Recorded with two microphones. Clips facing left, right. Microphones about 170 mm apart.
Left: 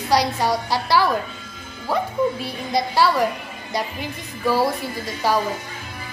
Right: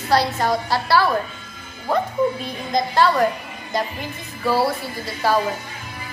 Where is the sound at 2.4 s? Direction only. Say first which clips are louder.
Even; 10° left (ahead or behind).